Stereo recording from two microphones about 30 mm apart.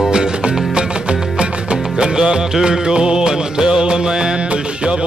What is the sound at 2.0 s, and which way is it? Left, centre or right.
Music, right.